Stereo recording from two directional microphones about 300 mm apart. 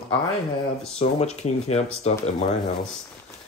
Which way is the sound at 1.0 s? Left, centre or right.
Centre.